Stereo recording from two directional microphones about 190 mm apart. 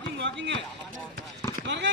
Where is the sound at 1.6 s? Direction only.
70° right (ahead or behind).